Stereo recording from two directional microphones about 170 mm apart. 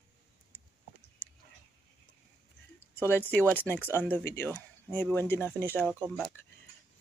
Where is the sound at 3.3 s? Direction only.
10° left (ahead or behind).